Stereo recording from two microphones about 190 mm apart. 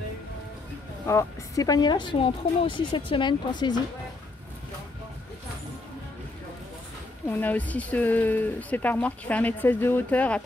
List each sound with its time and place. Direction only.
1.0 s a woman's voice: 15° left (ahead or behind)
7.2 s speech: 10° left (ahead or behind)